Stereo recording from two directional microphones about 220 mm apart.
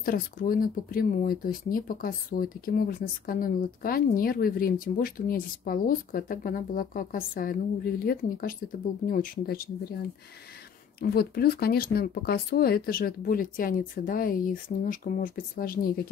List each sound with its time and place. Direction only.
0.0 s speech: 40° left (ahead or behind)
11.0 s speech: 45° left (ahead or behind)